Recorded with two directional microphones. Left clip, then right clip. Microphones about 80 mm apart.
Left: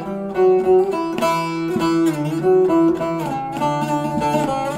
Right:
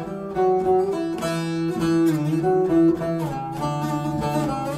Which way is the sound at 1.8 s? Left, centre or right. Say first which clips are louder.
Left 3 dB; left.